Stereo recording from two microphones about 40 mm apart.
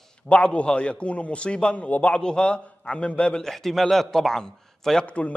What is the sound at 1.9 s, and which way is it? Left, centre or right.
Speech, left.